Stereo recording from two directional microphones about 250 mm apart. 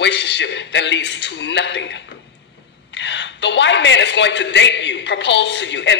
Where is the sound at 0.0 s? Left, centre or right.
Left.